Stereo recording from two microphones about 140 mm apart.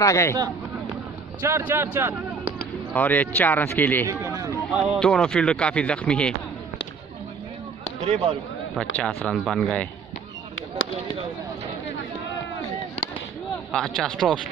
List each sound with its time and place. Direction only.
0.0 s speech: 20° left (ahead or behind)
1.4 s speech: 20° right (ahead or behind)
2.9 s speech: 10° left (ahead or behind)
4.1 s run: 25° right (ahead or behind)
5.0 s speech: 5° left (ahead or behind)
8.0 s speech: 45° right (ahead or behind)
8.7 s speech: 10° left (ahead or behind)
13.7 s speech: 5° left (ahead or behind)